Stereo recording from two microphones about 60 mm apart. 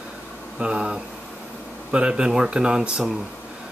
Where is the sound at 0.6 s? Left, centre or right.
Centre.